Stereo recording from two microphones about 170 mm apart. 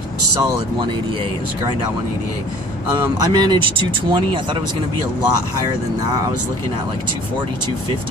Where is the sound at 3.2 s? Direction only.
25° right (ahead or behind).